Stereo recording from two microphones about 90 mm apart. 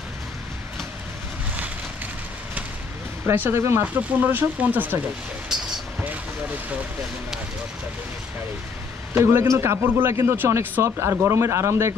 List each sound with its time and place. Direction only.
3.3 s a man's voice: 25° right (ahead or behind)
5.5 s vehicle: 10° right (ahead or behind)
9.1 s a man's voice: 25° right (ahead or behind)